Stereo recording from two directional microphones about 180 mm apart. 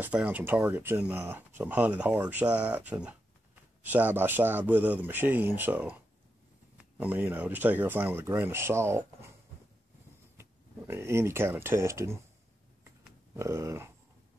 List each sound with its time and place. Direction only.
0.0 s speech: 10° right (ahead or behind)
10.3 s speech: 15° right (ahead or behind)
13.4 s speech: 15° right (ahead or behind)